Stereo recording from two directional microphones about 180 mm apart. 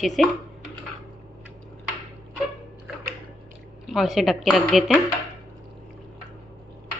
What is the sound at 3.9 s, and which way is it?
A woman's voice, centre (ahead or behind).